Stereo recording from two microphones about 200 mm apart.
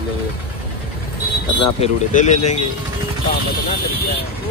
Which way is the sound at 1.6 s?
35° left (ahead or behind).